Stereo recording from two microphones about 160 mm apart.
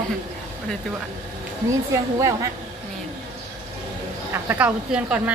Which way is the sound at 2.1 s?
20° right (ahead or behind).